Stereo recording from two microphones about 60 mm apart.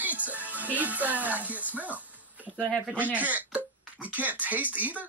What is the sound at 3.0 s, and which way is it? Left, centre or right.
Speech, right.